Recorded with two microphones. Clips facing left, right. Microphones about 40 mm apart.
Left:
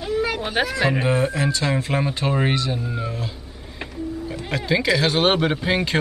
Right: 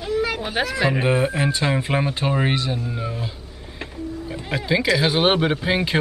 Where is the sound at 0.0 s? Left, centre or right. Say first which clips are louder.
Even; centre.